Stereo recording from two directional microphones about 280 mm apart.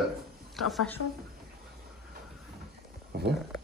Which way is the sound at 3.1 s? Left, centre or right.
Right.